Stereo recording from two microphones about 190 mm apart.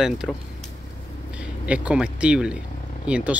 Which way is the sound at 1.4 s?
5° right (ahead or behind).